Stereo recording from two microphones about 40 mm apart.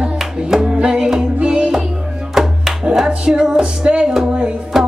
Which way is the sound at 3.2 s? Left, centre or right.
Right.